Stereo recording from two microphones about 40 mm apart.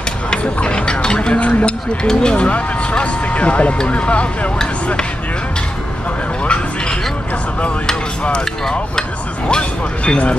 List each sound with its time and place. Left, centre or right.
0.4 s music: left
1.4 s a sound: left
2.0 s speech: left
6.4 s a sound: left
8.2 s speech: left
9.5 s speech: left